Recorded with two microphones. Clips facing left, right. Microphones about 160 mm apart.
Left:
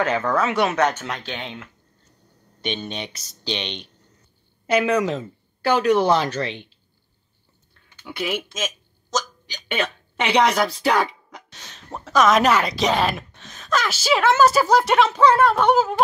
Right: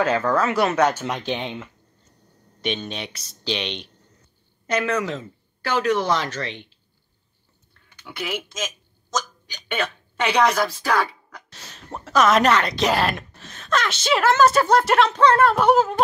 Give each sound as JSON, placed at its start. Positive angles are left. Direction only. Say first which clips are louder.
{"t": 0.0, "sound": "speech", "louder": "right 1 dB", "side_deg": 0}
{"t": 4.6, "sound": "speech", "louder": "left 4 dB", "side_deg": 10}
{"t": 10.1, "sound": "speech", "louder": "left 1 dB", "side_deg": 20}
{"t": 11.5, "sound": "speech", "louder": "even", "side_deg": -5}